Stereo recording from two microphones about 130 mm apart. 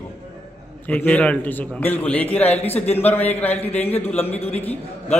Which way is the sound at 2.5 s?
55° left (ahead or behind).